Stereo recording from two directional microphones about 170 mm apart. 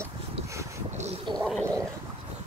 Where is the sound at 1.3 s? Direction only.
Centre (ahead or behind).